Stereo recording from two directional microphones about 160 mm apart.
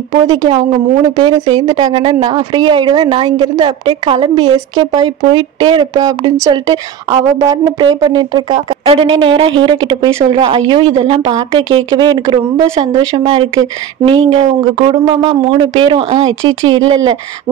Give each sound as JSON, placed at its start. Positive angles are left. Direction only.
{"t": 0.1, "sound": "speech", "side_deg": -25}